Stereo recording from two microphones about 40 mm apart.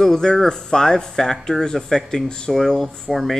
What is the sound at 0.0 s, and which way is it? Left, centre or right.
Speech, centre.